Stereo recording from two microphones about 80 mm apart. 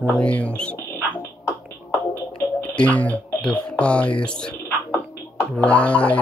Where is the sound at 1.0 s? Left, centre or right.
Left.